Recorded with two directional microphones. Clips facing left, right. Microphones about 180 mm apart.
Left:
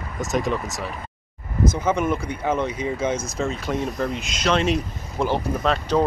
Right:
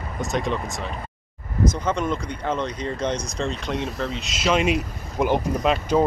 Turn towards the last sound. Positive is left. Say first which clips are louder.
# right 1 dB
turn(degrees=-10)  # may be behind; listen again after turning